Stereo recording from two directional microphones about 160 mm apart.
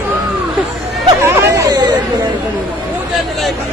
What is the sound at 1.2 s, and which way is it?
Chatter, 15° right (ahead or behind).